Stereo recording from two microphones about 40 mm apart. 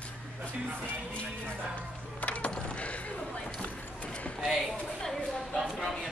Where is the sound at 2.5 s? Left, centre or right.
Left.